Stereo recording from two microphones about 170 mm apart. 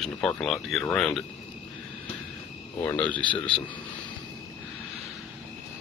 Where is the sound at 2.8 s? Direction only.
10° left (ahead or behind).